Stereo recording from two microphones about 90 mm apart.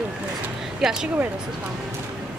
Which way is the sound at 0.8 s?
5° right (ahead or behind).